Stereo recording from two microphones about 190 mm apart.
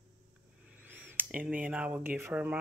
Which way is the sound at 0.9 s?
10° right (ahead or behind).